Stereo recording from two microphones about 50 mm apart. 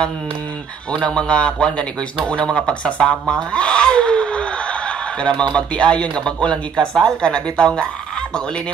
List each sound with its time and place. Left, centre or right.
0.9 s a man's voice: centre